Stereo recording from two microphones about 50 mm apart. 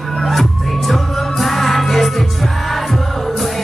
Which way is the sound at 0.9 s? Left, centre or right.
Centre.